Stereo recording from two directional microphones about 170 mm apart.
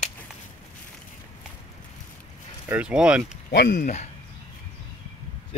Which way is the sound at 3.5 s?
65° left (ahead or behind).